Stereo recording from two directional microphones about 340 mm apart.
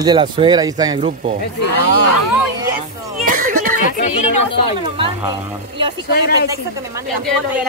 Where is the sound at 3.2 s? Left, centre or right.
Right.